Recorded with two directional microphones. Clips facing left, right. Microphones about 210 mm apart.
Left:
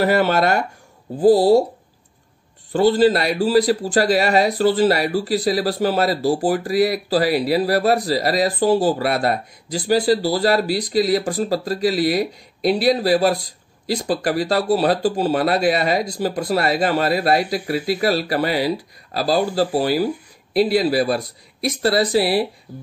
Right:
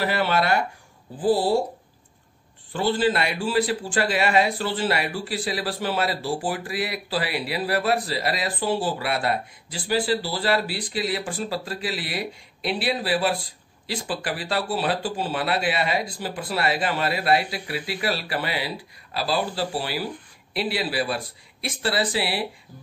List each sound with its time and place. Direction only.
0.0 s a man's voice: 45° left (ahead or behind)
2.7 s a man's voice: 40° left (ahead or behind)